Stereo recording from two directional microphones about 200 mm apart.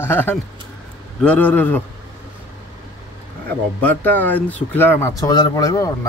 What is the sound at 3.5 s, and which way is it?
Speech, 10° left (ahead or behind).